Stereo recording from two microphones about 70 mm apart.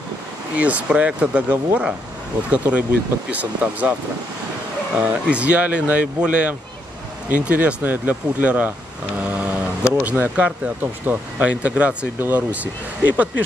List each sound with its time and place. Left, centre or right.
0.6 s speech: right
5.3 s speech: centre
9.2 s a sound: centre
10.0 s speech: right